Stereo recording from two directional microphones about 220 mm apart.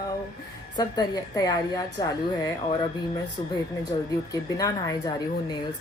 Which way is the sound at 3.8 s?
15° left (ahead or behind).